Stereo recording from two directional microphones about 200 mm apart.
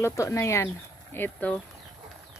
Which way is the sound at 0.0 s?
15° left (ahead or behind).